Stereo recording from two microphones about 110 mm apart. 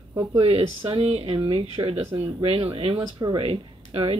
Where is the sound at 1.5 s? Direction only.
50° right (ahead or behind).